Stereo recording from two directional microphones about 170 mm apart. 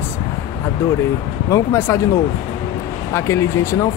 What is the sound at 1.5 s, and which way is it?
Speech, 15° left (ahead or behind).